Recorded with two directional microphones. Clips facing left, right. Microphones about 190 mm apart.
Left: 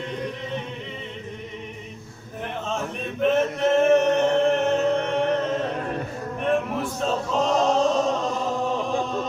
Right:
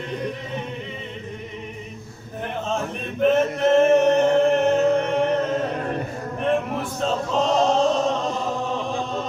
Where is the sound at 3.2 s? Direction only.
Centre (ahead or behind).